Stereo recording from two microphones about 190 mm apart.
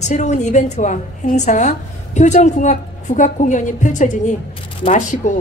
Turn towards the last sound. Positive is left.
turn(degrees=40)  # may be behind; listen again after turning